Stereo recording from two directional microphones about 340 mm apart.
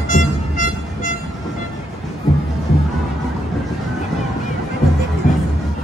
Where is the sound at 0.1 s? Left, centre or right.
Left.